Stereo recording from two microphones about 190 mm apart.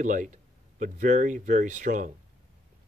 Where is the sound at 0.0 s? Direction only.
40° right (ahead or behind).